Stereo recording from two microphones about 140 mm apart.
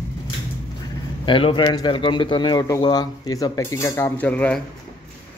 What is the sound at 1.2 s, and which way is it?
Speech, 40° left (ahead or behind).